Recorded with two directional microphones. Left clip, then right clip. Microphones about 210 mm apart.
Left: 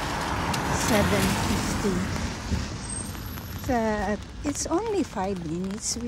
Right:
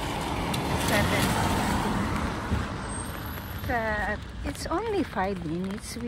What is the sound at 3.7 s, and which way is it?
Speech, 30° left (ahead or behind).